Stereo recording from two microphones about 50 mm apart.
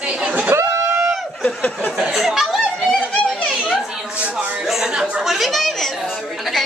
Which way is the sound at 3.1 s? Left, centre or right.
Left.